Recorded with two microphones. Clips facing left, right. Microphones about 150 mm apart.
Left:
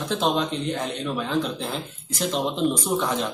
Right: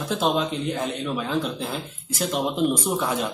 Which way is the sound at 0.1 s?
5° right (ahead or behind).